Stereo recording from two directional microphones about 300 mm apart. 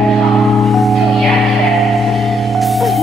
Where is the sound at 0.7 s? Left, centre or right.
Centre.